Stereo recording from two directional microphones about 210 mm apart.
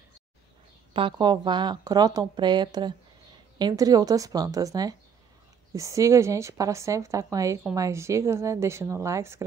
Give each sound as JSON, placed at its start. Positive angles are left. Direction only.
{"t": 0.9, "sound": "a woman's voice", "side_deg": -20}